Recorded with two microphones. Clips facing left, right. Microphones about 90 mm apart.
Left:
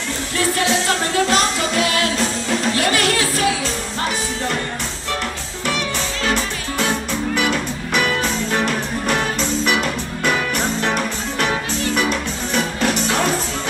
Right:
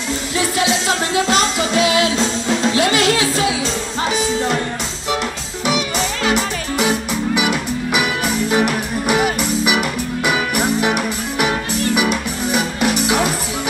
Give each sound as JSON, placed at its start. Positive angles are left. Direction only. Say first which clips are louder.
{"t": 0.4, "sound": "music", "louder": "even", "side_deg": -20}
{"t": 6.2, "sound": "music", "louder": "right 2 dB", "side_deg": -15}